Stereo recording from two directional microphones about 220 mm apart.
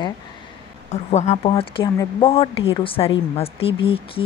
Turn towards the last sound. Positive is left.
turn(degrees=25)  # may be behind; listen again after turning